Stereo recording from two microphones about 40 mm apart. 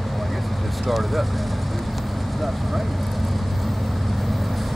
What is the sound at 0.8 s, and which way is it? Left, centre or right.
Vehicle, centre.